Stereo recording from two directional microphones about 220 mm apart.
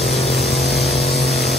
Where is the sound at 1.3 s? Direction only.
Centre (ahead or behind).